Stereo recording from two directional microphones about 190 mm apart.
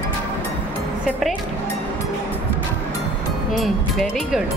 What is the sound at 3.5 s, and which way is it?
Speech, centre (ahead or behind).